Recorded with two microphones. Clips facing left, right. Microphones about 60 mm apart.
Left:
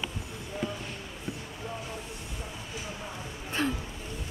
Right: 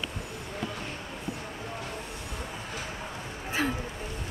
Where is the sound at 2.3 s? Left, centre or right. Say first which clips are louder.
Right 4 dB; right.